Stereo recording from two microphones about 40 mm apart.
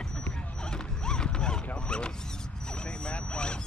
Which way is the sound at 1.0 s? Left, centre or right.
Centre.